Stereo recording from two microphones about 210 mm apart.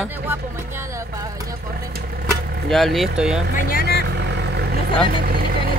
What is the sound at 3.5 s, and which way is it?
Speech, 45° left (ahead or behind).